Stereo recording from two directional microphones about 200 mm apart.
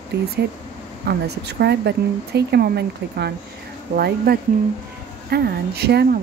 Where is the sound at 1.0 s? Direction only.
55° right (ahead or behind).